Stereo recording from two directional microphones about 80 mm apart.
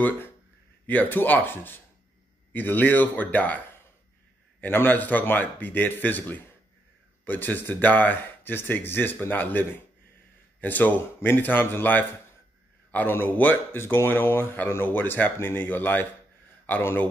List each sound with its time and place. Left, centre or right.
0.8 s speech: left